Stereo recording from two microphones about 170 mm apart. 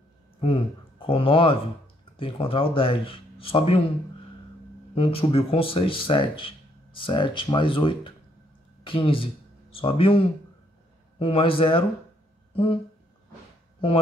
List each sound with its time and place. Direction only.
0.4 s speech: 30° left (ahead or behind)
4.9 s speech: 35° left (ahead or behind)